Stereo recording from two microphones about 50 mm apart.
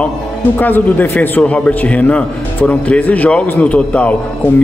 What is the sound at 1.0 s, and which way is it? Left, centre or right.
Speech, left.